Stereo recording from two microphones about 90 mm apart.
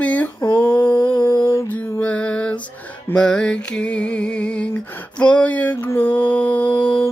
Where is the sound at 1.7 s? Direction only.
20° left (ahead or behind).